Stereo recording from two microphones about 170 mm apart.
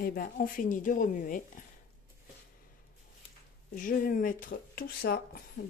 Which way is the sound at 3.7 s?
55° left (ahead or behind).